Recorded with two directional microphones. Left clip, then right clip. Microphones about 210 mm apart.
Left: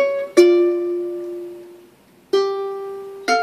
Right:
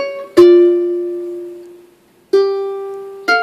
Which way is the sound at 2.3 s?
10° right (ahead or behind).